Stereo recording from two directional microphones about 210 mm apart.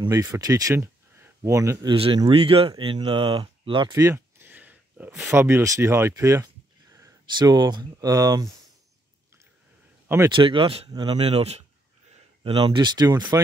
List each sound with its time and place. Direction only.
0.0 s speech: 15° right (ahead or behind)
3.9 s speech: 10° right (ahead or behind)
8.5 s a sound: centre (ahead or behind)
10.0 s speech: 10° right (ahead or behind)
10.3 s speech: 25° right (ahead or behind)